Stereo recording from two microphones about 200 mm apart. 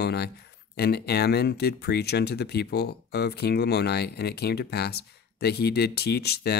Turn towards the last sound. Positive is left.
turn(degrees=55)  # may be behind; listen again after turning